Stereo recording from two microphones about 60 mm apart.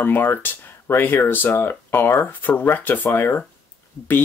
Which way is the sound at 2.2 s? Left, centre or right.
Left.